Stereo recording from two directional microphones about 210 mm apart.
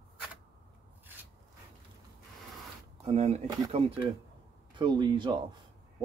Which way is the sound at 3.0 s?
30° right (ahead or behind).